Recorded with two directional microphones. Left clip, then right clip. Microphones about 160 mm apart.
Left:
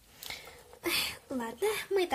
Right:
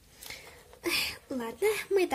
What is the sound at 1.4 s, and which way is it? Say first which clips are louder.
Speech: right 3 dB; 20° right (ahead or behind).